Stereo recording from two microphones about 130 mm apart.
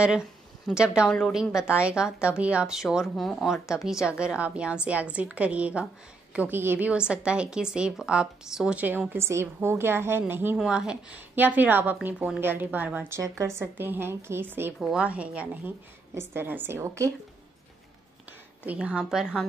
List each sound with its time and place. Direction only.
0.7 s a woman's voice: 5° right (ahead or behind)
10.6 s a woman's voice: 5° right (ahead or behind)
14.8 s a woman's voice: 5° right (ahead or behind); by 17.1 s 20° right (ahead or behind)
18.7 s a woman's voice: 10° right (ahead or behind)